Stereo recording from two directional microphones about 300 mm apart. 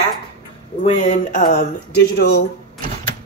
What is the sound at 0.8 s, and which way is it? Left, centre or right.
Speech, left.